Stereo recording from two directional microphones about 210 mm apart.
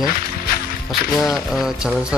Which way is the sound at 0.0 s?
45° left (ahead or behind).